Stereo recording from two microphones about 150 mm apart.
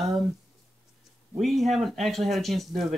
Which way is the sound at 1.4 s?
Centre (ahead or behind).